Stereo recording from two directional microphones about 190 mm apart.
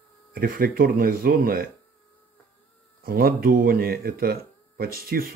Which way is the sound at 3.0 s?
50° right (ahead or behind).